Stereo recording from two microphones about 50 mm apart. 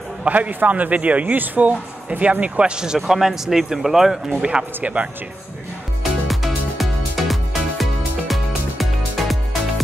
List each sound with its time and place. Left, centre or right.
0.2 s speech: right; by 4.2 s centre
4.4 s speech: centre
6.2 s music: centre